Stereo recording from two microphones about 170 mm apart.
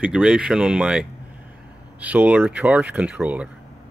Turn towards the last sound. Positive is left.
turn(degrees=-10)  # may be behind; listen again after turning